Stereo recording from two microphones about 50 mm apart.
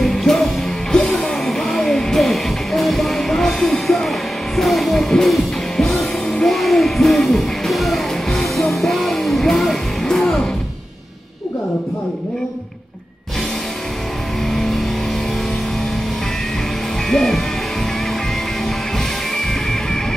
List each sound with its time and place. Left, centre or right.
0.0 s music: centre
17.1 s music: centre